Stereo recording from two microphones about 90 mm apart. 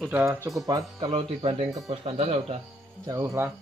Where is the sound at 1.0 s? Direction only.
90° right.